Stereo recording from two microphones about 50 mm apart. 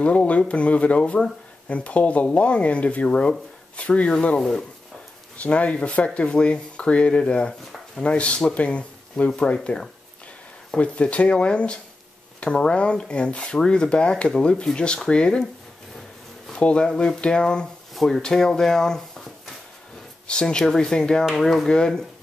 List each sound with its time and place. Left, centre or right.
0.0 s speech: left
4.4 s speech: centre
5.4 s speech: left
16.5 s speech: left
17.9 s speech: centre
20.2 s speech: centre